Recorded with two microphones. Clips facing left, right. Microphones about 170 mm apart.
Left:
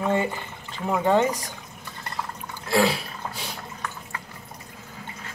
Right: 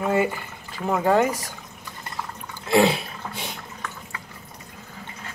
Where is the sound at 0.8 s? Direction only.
5° right (ahead or behind).